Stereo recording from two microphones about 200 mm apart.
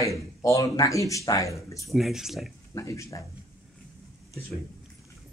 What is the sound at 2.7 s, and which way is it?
Speech, 15° left (ahead or behind).